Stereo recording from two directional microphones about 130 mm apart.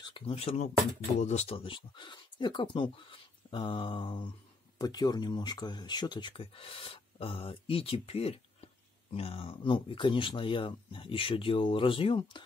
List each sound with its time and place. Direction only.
0.0 s speech: 45° left (ahead or behind)